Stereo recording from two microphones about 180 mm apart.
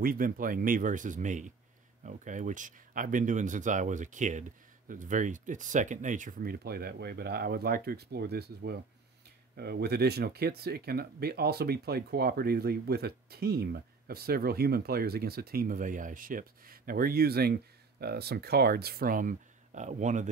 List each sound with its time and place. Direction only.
0.0 s speech: 50° right (ahead or behind)